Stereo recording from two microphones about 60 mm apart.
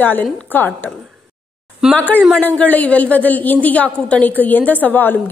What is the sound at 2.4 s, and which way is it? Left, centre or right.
A woman's voice, left.